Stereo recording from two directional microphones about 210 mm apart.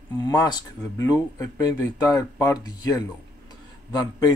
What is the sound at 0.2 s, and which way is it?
Speech, 20° left (ahead or behind).